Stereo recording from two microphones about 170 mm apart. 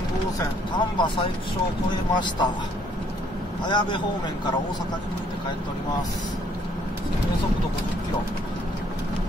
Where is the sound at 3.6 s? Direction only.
25° left (ahead or behind).